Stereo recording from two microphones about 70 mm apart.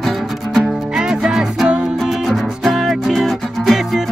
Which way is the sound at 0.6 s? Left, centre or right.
Centre.